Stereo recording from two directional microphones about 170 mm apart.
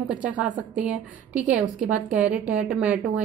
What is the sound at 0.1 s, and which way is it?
A woman's voice, 5° right (ahead or behind).